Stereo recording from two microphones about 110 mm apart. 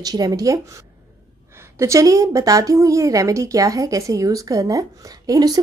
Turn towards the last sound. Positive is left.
turn(degrees=-35)  # may be behind; listen again after turning